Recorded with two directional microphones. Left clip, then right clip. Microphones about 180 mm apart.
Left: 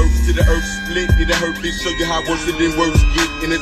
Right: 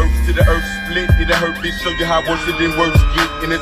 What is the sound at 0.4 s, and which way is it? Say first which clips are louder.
Music: right 3 dB; 35° right (ahead or behind).